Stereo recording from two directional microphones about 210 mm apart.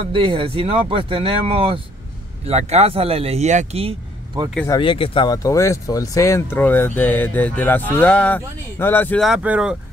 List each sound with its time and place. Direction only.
0.0 s speech: 25° right (ahead or behind)
4.7 s speech: 25° left (ahead or behind); by 9.8 s 5° right (ahead or behind)